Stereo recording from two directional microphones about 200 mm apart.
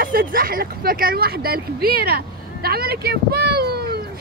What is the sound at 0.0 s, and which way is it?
Speech, 45° right (ahead or behind).